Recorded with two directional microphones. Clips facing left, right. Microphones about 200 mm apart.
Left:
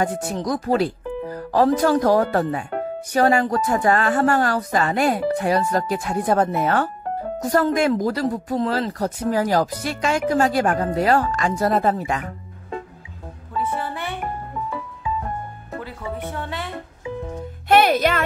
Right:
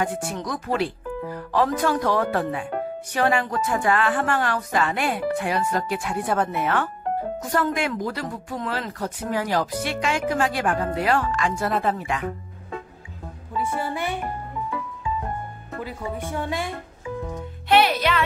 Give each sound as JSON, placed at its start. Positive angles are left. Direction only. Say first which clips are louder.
{"t": 0.0, "sound": "speech", "louder": "left 3 dB", "side_deg": 40}
{"t": 13.7, "sound": "music", "louder": "right 1 dB", "side_deg": -10}
{"t": 15.8, "sound": "speech", "louder": "right 1 dB", "side_deg": -15}
{"t": 17.6, "sound": "music", "louder": "left 3 dB", "side_deg": 45}